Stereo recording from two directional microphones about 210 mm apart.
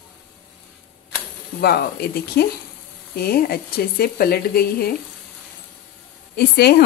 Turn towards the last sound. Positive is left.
turn(degrees=50)  # may be behind; listen again after turning